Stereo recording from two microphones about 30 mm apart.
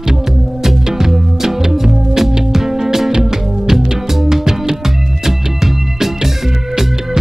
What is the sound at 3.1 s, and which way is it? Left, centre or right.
Music, right.